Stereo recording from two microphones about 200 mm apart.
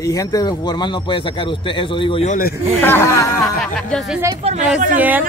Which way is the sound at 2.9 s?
15° left (ahead or behind).